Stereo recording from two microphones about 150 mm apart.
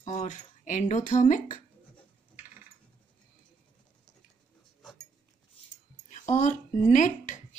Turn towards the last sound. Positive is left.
turn(degrees=55)  # may be behind; listen again after turning